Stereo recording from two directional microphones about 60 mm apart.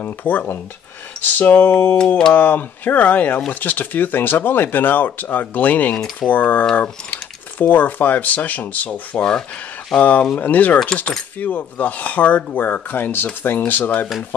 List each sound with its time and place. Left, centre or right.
0.0 s speech: left